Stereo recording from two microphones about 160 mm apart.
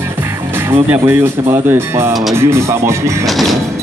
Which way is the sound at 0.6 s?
15° right (ahead or behind).